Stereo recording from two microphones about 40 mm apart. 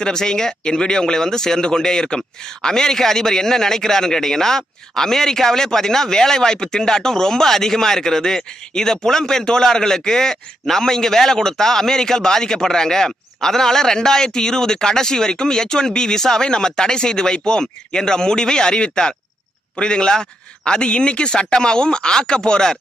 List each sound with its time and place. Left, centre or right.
0.0 s speech: centre